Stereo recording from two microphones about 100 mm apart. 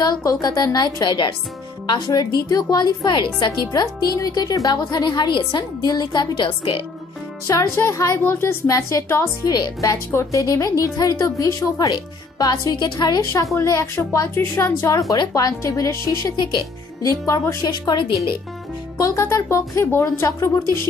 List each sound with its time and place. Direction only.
0.0 s a woman's voice: 40° left (ahead or behind)
3.8 s a woman's voice: 35° left (ahead or behind); by 6.8 s 60° left (ahead or behind)
7.4 s a woman's voice: 30° left (ahead or behind)
13.6 s a woman's voice: 30° left (ahead or behind)
17.8 s a woman's voice: 50° left (ahead or behind)
18.9 s speech: 30° left (ahead or behind)